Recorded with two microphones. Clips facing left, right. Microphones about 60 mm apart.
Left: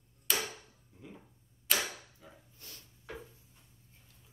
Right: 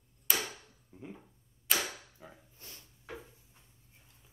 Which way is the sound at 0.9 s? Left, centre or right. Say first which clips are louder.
Right 5 dB; right.